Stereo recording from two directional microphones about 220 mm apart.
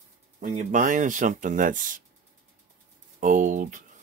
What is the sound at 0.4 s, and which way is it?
Speech, 35° right (ahead or behind).